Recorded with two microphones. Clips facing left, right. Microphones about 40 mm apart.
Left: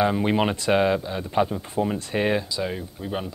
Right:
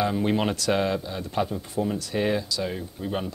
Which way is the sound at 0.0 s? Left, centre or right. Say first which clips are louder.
Left 3 dB; left.